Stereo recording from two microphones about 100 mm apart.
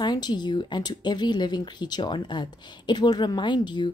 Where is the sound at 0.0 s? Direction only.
45° left (ahead or behind).